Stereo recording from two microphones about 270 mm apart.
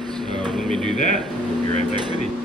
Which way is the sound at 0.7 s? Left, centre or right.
Centre.